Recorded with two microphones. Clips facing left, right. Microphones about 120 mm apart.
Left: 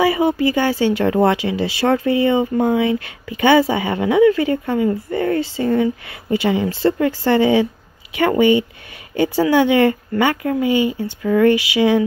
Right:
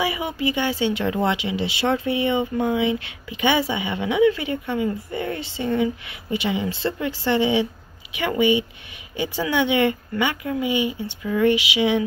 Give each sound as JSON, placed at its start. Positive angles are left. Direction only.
{"t": 0.0, "sound": "speech", "side_deg": 40}
{"t": 10.6, "sound": "speech", "side_deg": -15}
{"t": 10.9, "sound": "speech", "side_deg": 50}
{"t": 11.4, "sound": "a sound", "side_deg": -20}